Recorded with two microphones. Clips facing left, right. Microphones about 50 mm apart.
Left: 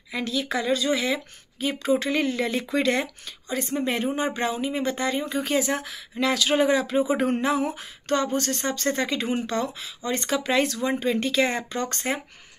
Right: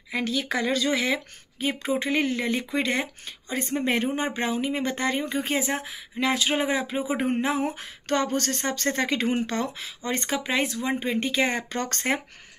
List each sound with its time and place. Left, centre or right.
0.1 s speech: right
1.9 s speech: right
3.3 s speech: right; by 7.4 s centre
7.4 s speech: right
10.4 s speech: centre
11.7 s speech: right